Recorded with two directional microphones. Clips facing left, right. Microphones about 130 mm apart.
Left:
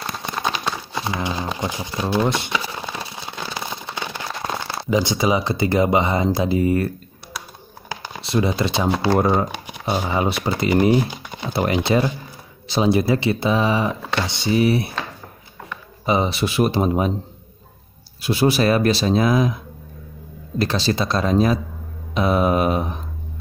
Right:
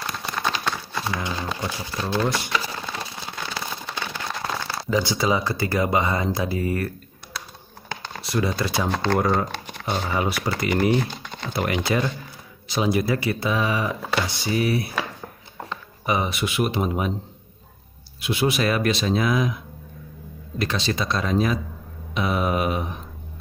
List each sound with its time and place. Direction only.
0.0 s a sound: 20° left (ahead or behind)
4.6 s speech: 15° left (ahead or behind)
7.9 s computer keyboard: 10° left (ahead or behind)
8.2 s speech: 25° left (ahead or behind)
8.8 s speech: 10° left (ahead or behind)
9.2 s speech: 20° left (ahead or behind)
9.7 s shuffling cards: 10° left (ahead or behind)
10.0 s speech: 25° left (ahead or behind)
11.0 s speech: 10° left (ahead or behind)
11.5 s speech: 30° left (ahead or behind)
16.1 s speech: 30° left (ahead or behind)
18.2 s speech: 35° left (ahead or behind)
20.5 s speech: 35° left (ahead or behind)